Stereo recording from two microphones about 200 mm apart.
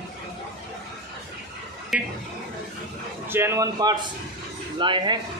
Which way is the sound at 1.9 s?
5° right (ahead or behind).